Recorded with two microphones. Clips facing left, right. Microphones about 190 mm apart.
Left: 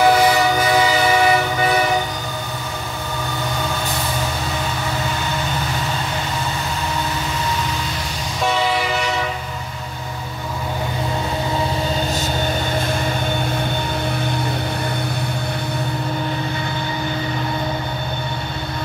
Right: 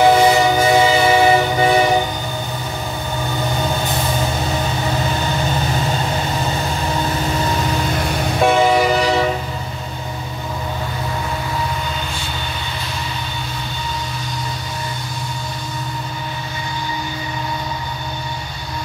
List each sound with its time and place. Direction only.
0.0 s train: 25° right (ahead or behind)
7.7 s train: 55° right (ahead or behind); by 9.3 s 35° right (ahead or behind)